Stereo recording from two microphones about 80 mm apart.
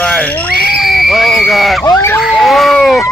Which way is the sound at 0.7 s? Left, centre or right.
Centre.